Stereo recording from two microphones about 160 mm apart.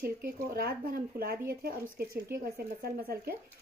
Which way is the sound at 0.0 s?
75° right (ahead or behind).